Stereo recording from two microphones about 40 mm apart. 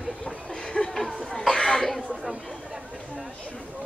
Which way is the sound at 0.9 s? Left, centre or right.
Centre.